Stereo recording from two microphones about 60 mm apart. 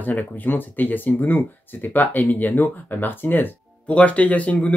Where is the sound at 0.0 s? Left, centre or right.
Left.